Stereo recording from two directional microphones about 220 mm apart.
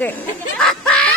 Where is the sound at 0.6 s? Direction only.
5° left (ahead or behind).